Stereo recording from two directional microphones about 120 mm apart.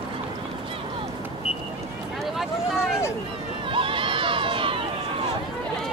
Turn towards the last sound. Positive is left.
turn(degrees=-45)  # may be behind; listen again after turning